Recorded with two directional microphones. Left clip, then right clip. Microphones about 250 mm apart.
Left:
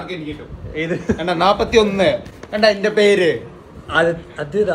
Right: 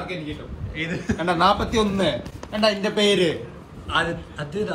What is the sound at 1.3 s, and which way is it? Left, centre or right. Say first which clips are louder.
Speech: left 5 dB; right.